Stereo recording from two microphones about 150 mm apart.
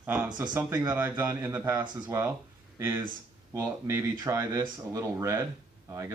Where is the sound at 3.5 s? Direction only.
20° right (ahead or behind).